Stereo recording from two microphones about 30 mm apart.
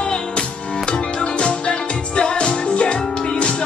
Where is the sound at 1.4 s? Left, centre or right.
Left.